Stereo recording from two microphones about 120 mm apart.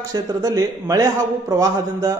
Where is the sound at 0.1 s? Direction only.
30° right (ahead or behind).